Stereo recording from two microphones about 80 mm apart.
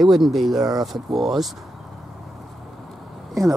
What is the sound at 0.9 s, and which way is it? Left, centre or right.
Speech, centre.